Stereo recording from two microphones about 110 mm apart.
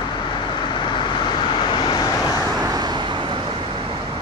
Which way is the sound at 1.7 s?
40° left (ahead or behind).